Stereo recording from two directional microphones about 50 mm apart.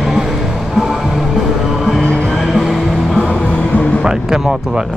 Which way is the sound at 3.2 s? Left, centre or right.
Centre.